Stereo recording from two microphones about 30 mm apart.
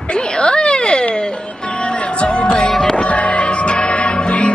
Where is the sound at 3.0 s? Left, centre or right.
Left.